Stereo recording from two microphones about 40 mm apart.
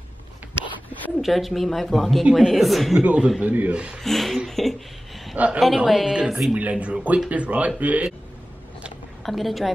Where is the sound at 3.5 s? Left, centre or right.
Right.